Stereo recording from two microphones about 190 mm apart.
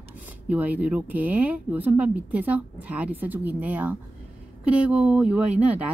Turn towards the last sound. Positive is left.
turn(degrees=-5)  # may be behind; listen again after turning